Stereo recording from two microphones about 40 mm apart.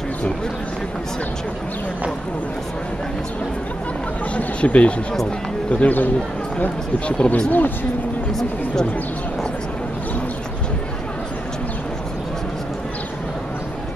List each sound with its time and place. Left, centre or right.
4.6 s speech: left
7.1 s speech: left